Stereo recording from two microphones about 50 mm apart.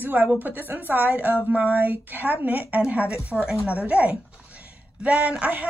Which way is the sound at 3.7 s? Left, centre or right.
Right.